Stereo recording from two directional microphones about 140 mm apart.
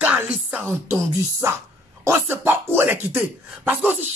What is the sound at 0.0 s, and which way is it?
Music, 10° right (ahead or behind).